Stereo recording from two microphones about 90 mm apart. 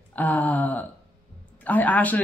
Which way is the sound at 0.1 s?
20° left (ahead or behind).